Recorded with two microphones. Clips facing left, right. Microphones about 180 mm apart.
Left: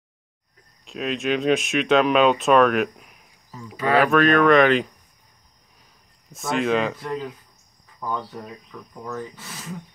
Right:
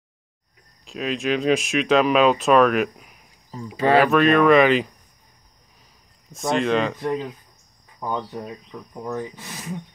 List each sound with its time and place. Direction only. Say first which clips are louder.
0.8 s speech: even; centre (ahead or behind)
3.7 s speech: right 3 dB; 30° right (ahead or behind)
4.0 s speech: left 2 dB; centre (ahead or behind)
6.5 s speech: right 1 dB; 5° left (ahead or behind)
7.0 s speech: right 4 dB; 20° right (ahead or behind)
8.3 s speech: right 4 dB; 20° right (ahead or behind)